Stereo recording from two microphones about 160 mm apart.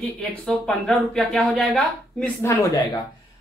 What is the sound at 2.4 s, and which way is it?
Speech, 20° left (ahead or behind).